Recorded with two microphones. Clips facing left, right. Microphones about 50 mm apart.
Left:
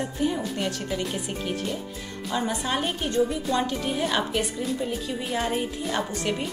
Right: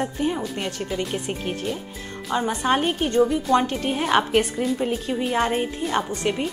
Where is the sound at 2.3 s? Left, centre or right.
Right.